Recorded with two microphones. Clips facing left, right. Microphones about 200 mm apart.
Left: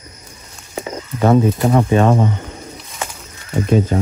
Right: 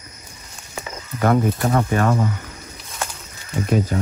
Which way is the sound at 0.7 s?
30° left (ahead or behind).